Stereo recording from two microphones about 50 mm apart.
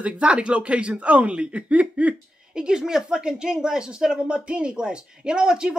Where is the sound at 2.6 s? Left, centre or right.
Centre.